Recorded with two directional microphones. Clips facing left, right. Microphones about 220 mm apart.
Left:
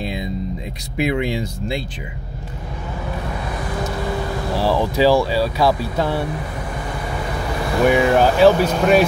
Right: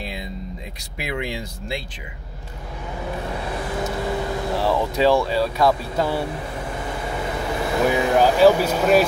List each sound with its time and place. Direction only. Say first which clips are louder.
0.9 s speech: left 8 dB; 20° left (ahead or behind)
3.3 s vehicle: left 1 dB; 25° right (ahead or behind)
4.6 s speech: left 4 dB; centre (ahead or behind)
6.9 s vehicle: even; 25° right (ahead or behind)
7.8 s speech: left 4 dB; centre (ahead or behind)